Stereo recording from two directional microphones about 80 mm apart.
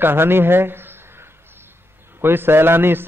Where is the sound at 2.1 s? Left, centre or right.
Right.